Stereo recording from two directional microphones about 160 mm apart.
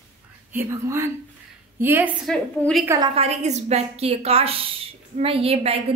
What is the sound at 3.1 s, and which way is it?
A woman's voice, 40° right (ahead or behind).